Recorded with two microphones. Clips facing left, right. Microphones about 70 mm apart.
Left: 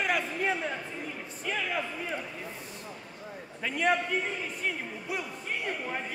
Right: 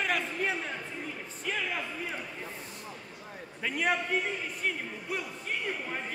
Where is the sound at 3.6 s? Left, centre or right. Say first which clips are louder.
Left 2 dB; centre.